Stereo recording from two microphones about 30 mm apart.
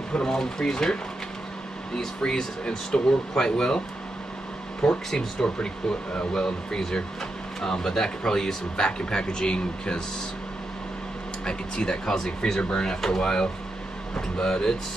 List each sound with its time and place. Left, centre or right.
0.1 s speech: left
0.4 s speech: centre
2.0 s speech: left
4.8 s speech: left
7.6 s speech: centre
8.8 s speech: left
11.4 s speech: left